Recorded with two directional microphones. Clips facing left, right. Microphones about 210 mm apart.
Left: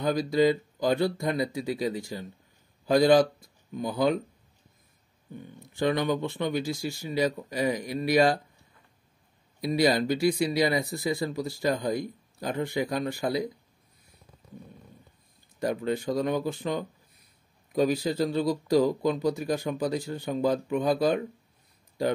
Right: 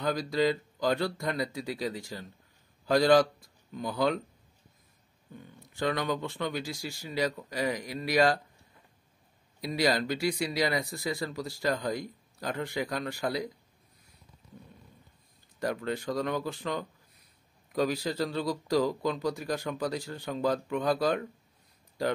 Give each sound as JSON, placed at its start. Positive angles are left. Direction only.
{"t": 0.0, "sound": "speech", "side_deg": 20}
{"t": 5.8, "sound": "speech", "side_deg": 20}
{"t": 9.8, "sound": "speech", "side_deg": 20}
{"t": 15.6, "sound": "speech", "side_deg": 20}